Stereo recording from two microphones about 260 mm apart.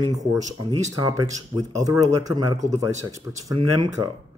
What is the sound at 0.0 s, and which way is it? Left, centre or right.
Speech, centre.